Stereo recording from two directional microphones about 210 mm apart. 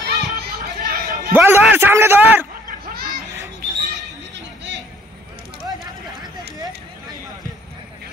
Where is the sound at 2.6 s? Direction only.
45° right (ahead or behind).